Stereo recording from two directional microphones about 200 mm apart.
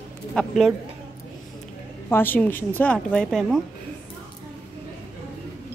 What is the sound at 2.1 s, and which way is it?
Speech, 10° left (ahead or behind).